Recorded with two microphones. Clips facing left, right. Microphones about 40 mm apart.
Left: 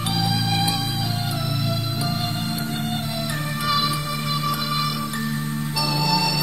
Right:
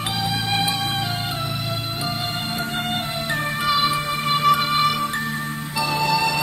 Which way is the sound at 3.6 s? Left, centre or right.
Right.